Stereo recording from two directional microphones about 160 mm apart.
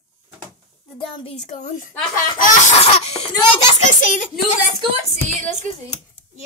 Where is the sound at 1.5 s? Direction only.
55° left (ahead or behind).